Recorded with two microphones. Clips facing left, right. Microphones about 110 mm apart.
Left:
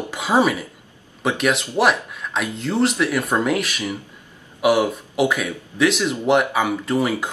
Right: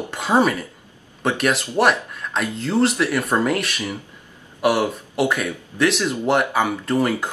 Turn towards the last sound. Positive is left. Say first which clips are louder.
# even
turn(degrees=0)  # may be behind; listen again after turning